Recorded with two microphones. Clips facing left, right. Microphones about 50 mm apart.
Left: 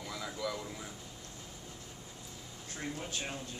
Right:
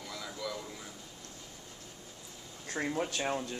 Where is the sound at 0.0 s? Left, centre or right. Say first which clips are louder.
Left 2 dB; centre.